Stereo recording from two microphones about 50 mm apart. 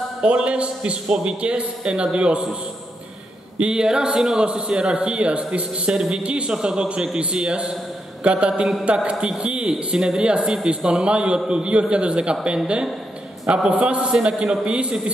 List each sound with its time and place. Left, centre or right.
0.2 s a man's voice: right
3.5 s a man's voice: centre